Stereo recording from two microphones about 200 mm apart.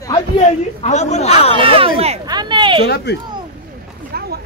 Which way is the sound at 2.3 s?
20° right (ahead or behind).